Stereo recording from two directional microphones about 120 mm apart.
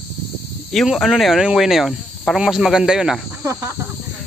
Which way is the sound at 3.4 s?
25° right (ahead or behind).